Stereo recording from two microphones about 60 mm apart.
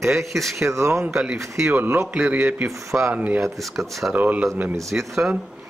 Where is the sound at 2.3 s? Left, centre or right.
Right.